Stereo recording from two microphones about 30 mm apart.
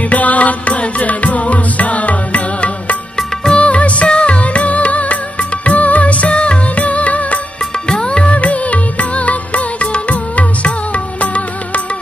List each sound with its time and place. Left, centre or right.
0.1 s music: left
3.5 s music of bollywood: left
4.1 s music: left
6.3 s music: left
6.7 s music: left
7.9 s music: left